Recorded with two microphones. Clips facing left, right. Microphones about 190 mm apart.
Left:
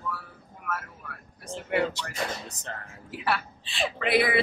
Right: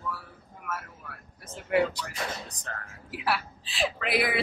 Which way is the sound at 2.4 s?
25° left (ahead or behind).